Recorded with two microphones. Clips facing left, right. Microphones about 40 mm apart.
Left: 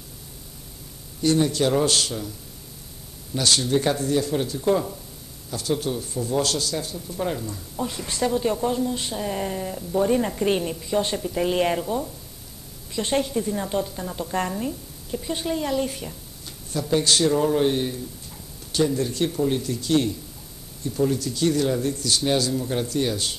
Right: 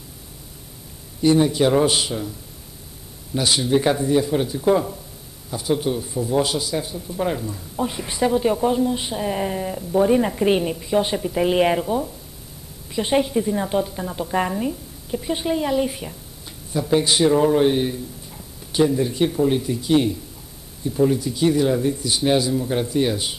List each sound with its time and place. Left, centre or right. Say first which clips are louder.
1.2 s speech: right 4 dB; centre
3.3 s speech: right 2 dB; centre